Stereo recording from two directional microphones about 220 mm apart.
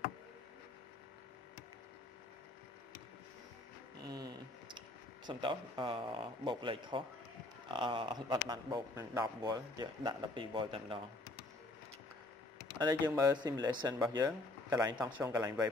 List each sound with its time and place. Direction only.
4.0 s a sound: 20° right (ahead or behind)
7.6 s speech: 20° right (ahead or behind)
12.7 s speech: 20° right (ahead or behind)